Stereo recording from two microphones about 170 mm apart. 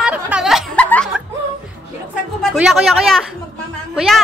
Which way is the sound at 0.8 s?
10° left (ahead or behind).